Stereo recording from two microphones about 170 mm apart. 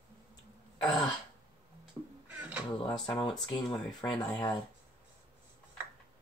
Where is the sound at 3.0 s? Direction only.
25° left (ahead or behind).